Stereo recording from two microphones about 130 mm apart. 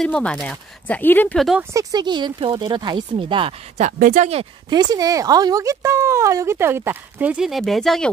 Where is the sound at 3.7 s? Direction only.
80° right.